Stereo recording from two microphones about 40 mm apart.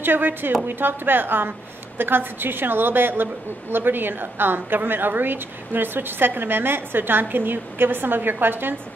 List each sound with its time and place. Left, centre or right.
0.0 s a woman's voice: right